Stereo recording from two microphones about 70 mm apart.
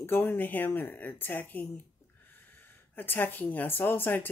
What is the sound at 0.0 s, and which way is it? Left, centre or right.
Speech, left.